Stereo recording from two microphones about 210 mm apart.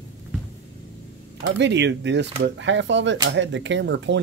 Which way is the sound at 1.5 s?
55° right (ahead or behind).